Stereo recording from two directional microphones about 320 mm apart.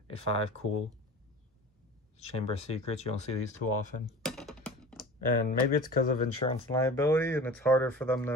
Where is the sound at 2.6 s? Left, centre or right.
Centre.